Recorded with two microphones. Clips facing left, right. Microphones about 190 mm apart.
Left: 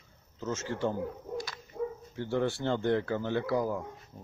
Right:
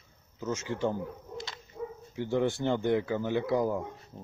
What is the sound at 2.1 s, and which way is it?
Speech, 15° right (ahead or behind).